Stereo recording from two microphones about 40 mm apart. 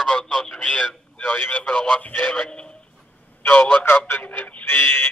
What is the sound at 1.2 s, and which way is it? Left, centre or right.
Speech, left.